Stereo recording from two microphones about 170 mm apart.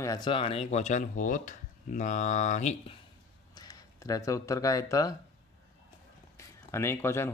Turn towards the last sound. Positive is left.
turn(degrees=15)  # may be behind; listen again after turning